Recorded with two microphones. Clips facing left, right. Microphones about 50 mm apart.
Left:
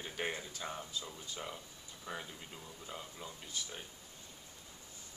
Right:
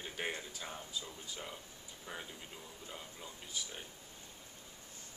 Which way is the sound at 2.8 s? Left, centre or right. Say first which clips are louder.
Left 3 dB; centre.